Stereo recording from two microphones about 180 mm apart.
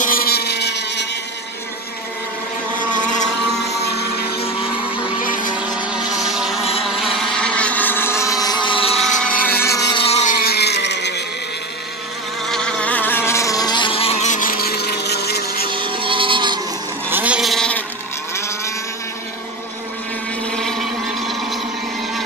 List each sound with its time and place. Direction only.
0.0 s a sound: 55° left (ahead or behind); by 1.0 s 70° left (ahead or behind)
3.6 s a sound: 65° left (ahead or behind)
5.2 s vehicle: 45° left (ahead or behind)
5.6 s vehicle: 5° right (ahead or behind); by 8.9 s 30° left (ahead or behind)
8.9 s vehicle: 5° left (ahead or behind)
9.5 s motorboat: 15° left (ahead or behind)
9.9 s vehicle: 35° left (ahead or behind); by 11.2 s 70° left (ahead or behind)
12.4 s vehicle: 5° left (ahead or behind); by 15.7 s 60° left (ahead or behind)
15.7 s vehicle: 30° right (ahead or behind)
17.1 s goat: 5° right (ahead or behind)